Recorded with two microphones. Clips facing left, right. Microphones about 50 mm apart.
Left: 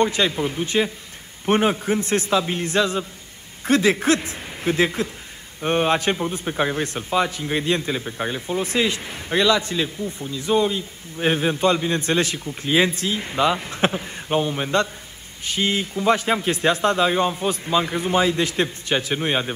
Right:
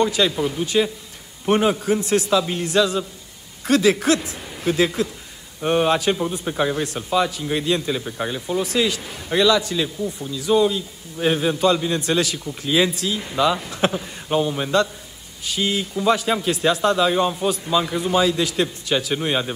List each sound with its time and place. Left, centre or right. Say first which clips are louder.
0.0 s a man's voice: right 1 dB; left
6.4 s speech: even; centre
6.7 s a man's voice: right 1 dB; left
7.9 s a man's voice: right 1 dB; centre
8.4 s a man's voice: right 2 dB; left
15.4 s a man's voice: even; left
19.1 s a man's voice: even; centre